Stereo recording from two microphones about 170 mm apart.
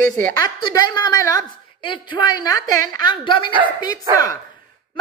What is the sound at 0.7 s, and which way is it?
Speech, 25° left (ahead or behind).